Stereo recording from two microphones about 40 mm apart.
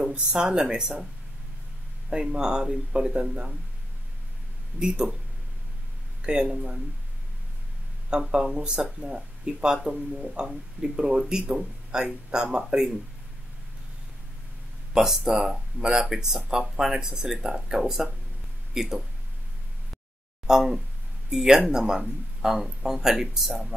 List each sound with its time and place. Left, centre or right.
0.0 s speech: right
2.0 s speech: centre
4.7 s speech: right
6.2 s speech: right
8.1 s a man's voice: centre
15.0 s speech: centre
20.4 s speech: centre